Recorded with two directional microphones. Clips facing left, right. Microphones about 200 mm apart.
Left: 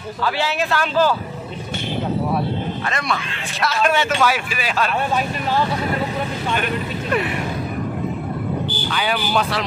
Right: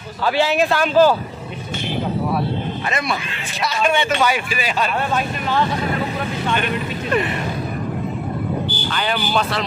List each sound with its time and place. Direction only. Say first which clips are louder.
0.2 s speech: right 5 dB; 15° right (ahead or behind)
2.9 s speech: right 1 dB; 5° right (ahead or behind)
6.5 s speech: even; 5° left (ahead or behind)
8.9 s speech: even; 5° left (ahead or behind)